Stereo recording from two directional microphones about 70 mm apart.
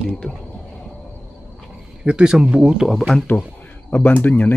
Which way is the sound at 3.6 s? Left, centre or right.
Left.